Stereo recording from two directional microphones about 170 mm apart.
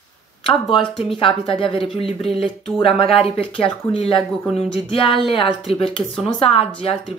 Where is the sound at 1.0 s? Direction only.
30° left (ahead or behind).